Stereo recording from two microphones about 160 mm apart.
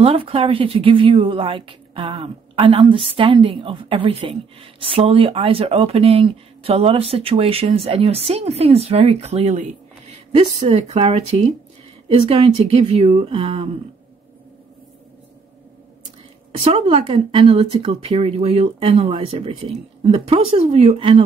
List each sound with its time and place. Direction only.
0.0 s speech: 35° right (ahead or behind)
16.6 s speech: 40° right (ahead or behind)